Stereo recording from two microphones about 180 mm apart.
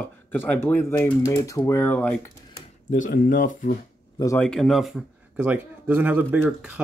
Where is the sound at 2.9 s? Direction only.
50° left (ahead or behind).